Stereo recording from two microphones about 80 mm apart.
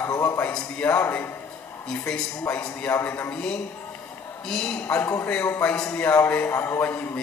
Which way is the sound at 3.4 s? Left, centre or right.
Centre.